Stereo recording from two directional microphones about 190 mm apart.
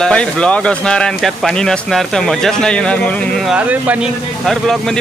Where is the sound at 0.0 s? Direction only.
5° left (ahead or behind).